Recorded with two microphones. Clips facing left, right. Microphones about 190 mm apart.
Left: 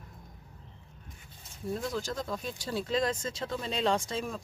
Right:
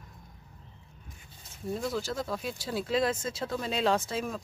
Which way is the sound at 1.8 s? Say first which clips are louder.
Right 3 dB; 5° right (ahead or behind).